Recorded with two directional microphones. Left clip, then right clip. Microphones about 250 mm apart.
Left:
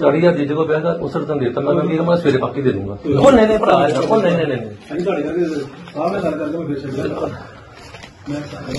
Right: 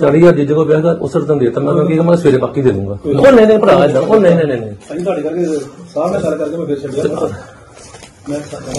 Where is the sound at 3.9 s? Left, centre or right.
Right.